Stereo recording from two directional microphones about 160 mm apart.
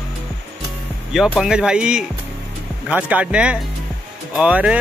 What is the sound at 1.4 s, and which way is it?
Speech, 5° right (ahead or behind).